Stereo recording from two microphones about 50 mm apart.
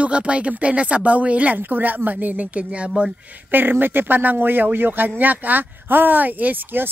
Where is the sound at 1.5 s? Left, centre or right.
Right.